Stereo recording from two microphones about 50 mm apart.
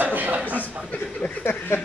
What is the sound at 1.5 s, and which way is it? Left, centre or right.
Speech, left.